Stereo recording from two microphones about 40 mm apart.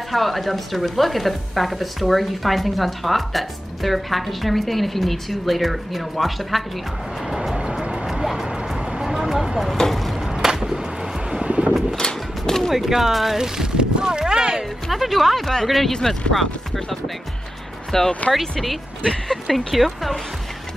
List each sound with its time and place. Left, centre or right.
0.1 s speech: centre
7.2 s music: centre
7.9 s a sound: centre
8.5 s vehicle: centre
9.8 s a sound: centre
10.2 s music: centre
11.4 s a sound: right
12.0 s a sound: centre
12.7 s speech: centre
13.4 s speech: centre
14.9 s speech: centre
17.9 s speech: centre
18.3 s speech: centre